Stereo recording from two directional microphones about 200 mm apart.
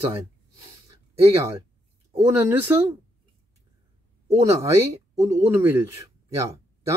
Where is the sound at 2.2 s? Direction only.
15° right (ahead or behind).